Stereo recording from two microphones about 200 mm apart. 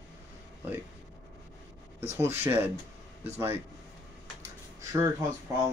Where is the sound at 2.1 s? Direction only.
10° right (ahead or behind).